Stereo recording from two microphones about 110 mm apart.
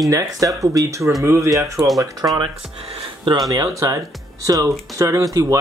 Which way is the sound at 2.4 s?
60° right (ahead or behind).